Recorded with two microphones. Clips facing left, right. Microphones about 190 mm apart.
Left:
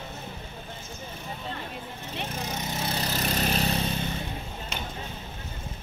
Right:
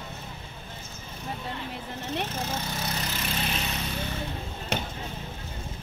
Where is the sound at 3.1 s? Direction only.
40° left (ahead or behind).